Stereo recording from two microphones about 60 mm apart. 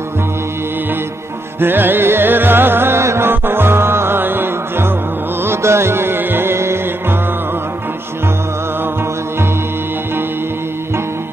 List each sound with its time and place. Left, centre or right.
1.6 s music: right
3.0 s music: right
3.3 s music: right